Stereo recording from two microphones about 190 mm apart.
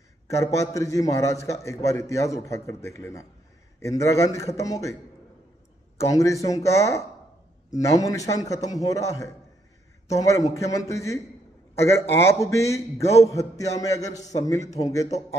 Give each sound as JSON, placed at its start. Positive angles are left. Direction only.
{"t": 0.5, "sound": "a man's voice", "side_deg": 15}
{"t": 5.9, "sound": "a man's voice", "side_deg": 15}